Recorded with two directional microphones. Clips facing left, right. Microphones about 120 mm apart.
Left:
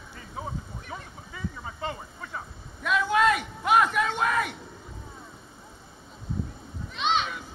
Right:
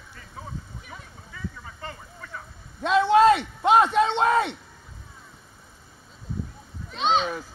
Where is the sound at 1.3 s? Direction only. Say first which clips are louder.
Left 2 dB; 15° left (ahead or behind).